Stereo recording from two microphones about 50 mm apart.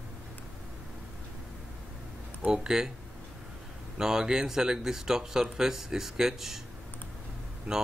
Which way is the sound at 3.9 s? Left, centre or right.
Centre.